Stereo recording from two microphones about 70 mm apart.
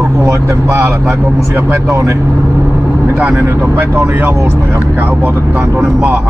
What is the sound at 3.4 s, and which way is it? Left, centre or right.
Speech, right.